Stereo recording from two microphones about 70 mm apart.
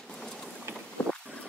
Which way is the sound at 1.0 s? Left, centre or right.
Centre.